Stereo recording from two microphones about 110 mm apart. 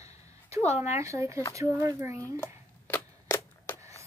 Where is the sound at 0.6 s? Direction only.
75° left (ahead or behind).